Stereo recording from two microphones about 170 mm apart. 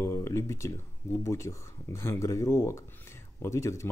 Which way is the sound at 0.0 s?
15° left (ahead or behind).